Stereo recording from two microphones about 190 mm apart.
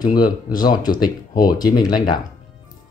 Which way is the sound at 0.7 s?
20° left (ahead or behind).